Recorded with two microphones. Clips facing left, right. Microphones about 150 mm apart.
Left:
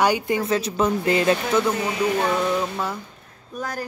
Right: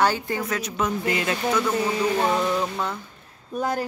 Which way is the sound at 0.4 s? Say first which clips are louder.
Left 5 dB; 30° left (ahead or behind).